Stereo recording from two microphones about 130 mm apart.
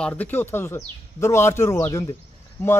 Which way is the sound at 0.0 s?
15° left (ahead or behind).